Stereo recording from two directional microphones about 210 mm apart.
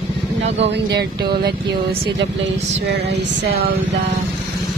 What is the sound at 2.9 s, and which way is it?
Speech, 50° right (ahead or behind).